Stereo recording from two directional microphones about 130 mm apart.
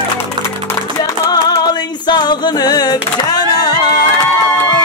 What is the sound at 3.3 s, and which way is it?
Music, 30° left (ahead or behind).